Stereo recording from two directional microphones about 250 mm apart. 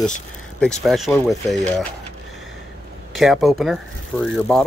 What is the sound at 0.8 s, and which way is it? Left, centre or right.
Speech, centre.